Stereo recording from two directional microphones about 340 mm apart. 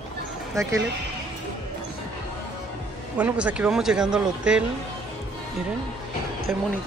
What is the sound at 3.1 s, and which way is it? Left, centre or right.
Speech, centre.